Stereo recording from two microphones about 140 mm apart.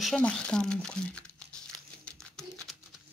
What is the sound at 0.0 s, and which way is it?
Speech, 5° left (ahead or behind).